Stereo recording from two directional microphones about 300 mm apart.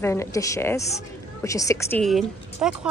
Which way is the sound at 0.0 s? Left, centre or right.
Centre.